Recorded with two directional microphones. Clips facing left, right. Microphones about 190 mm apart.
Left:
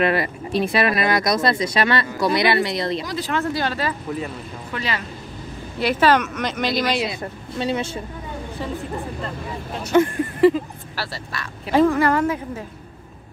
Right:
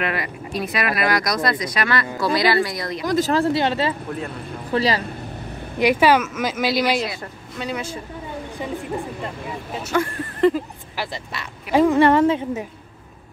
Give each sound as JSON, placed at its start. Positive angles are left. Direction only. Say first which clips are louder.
{"t": 0.0, "sound": "speech", "louder": "left 5 dB", "side_deg": 30}
{"t": 3.1, "sound": "speech", "louder": "right 5 dB", "side_deg": -40}
{"t": 4.7, "sound": "speech", "louder": "right 7 dB", "side_deg": -35}
{"t": 5.8, "sound": "speech", "louder": "right 2 dB", "side_deg": -15}
{"t": 7.1, "sound": "speech", "louder": "left 3 dB", "side_deg": 25}
{"t": 9.2, "sound": "speech", "louder": "even", "side_deg": -5}
{"t": 10.4, "sound": "speech", "louder": "left 2 dB", "side_deg": 5}
{"t": 11.0, "sound": "speech", "louder": "right 1 dB", "side_deg": -15}